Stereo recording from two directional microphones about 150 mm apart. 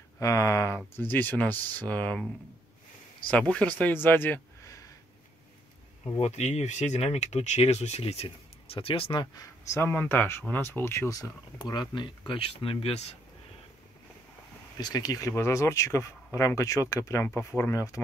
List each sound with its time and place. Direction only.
0.2 s speech: 20° left (ahead or behind)
6.1 s speech: 45° left (ahead or behind)
14.8 s speech: 25° left (ahead or behind)